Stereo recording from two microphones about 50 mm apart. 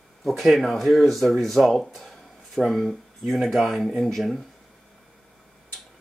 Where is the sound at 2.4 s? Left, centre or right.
Centre.